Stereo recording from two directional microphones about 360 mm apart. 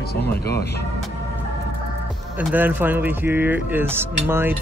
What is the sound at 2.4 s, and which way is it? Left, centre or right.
Speech, centre.